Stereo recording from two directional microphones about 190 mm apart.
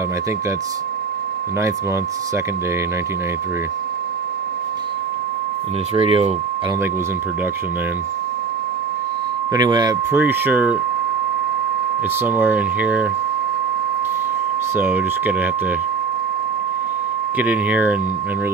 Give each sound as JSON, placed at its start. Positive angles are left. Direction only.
{"t": 5.9, "sound": "speech", "side_deg": -30}
{"t": 9.5, "sound": "speech", "side_deg": -20}
{"t": 10.2, "sound": "speech", "side_deg": -10}
{"t": 12.2, "sound": "speech", "side_deg": -10}
{"t": 14.8, "sound": "speech", "side_deg": -10}
{"t": 17.4, "sound": "speech", "side_deg": -10}